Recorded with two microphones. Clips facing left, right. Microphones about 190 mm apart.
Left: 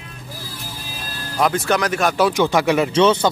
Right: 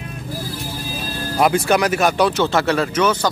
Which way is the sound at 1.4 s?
10° right (ahead or behind).